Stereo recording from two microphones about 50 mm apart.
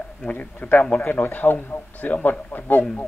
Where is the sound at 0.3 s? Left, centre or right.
Left.